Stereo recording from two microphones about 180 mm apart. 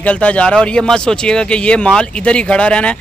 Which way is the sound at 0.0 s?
5° left (ahead or behind).